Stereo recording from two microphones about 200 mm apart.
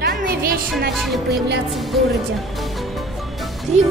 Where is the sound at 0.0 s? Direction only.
50° right (ahead or behind).